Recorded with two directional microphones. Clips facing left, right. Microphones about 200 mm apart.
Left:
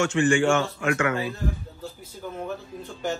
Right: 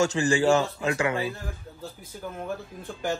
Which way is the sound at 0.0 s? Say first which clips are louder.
Left 1 dB; 35° right (ahead or behind).